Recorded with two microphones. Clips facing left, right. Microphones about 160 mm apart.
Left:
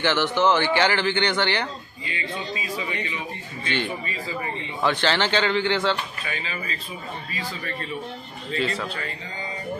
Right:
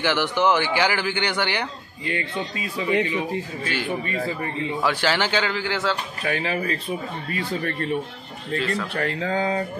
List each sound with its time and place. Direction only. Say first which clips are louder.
0.0 s a man's voice: even; 10° right (ahead or behind)
2.0 s a man's voice: right 4 dB; 60° right (ahead or behind)
3.6 s speech: even; 5° right (ahead or behind)
4.0 s speech: right 4 dB; 55° right (ahead or behind)
4.8 s a man's voice: left 2 dB; 10° right (ahead or behind)
6.2 s a man's voice: right 8 dB; 70° right (ahead or behind)
8.5 s speech: right 1 dB; centre (ahead or behind)
8.9 s speech: right 10 dB; 80° right